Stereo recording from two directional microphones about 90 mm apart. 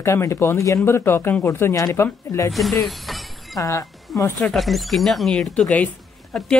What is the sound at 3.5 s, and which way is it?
Speech, 35° left (ahead or behind).